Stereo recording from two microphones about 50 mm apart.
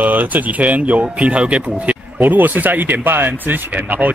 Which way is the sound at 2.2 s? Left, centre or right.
Right.